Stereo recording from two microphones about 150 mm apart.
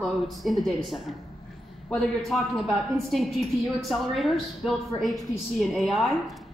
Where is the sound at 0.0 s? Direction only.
Centre (ahead or behind).